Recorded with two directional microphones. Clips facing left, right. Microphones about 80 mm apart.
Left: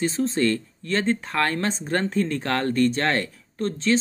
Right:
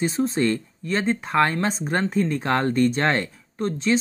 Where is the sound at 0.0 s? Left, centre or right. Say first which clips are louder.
Right 1 dB; centre.